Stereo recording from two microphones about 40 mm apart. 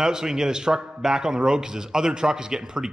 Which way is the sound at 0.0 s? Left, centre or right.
Centre.